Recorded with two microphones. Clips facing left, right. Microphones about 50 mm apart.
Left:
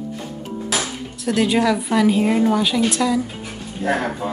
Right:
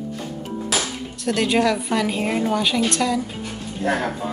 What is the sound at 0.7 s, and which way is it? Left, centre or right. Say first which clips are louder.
Speech: left 1 dB; centre.